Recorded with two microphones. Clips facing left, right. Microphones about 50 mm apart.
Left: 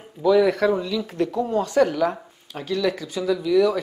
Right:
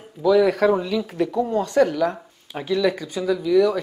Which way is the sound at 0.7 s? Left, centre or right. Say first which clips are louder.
Right 2 dB; centre.